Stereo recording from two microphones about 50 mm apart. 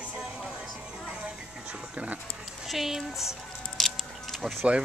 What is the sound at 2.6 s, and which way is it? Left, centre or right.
Speech, centre.